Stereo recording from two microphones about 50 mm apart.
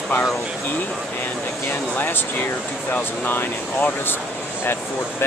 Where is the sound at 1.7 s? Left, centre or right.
Left.